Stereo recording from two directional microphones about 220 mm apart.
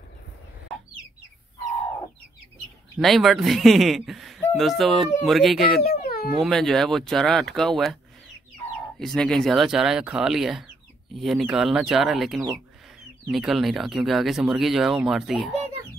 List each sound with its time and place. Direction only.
3.0 s speech: centre (ahead or behind)
5.8 s a sound: 45° left (ahead or behind)
6.4 s speech: centre (ahead or behind)
9.0 s speech: centre (ahead or behind)